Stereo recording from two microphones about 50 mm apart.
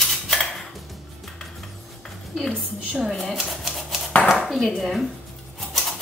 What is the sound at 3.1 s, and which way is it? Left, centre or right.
Typewriter, centre.